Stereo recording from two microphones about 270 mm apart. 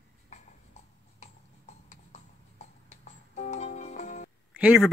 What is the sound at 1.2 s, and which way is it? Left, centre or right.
Music, left.